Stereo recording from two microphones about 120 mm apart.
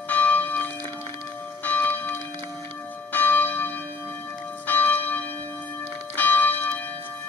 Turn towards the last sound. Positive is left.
turn(degrees=15)  # may be behind; listen again after turning